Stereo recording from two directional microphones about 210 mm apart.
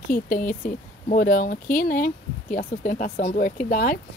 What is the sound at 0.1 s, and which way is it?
Speech, 40° left (ahead or behind).